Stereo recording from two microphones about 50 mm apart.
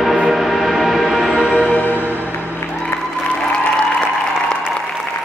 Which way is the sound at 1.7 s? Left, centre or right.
Left.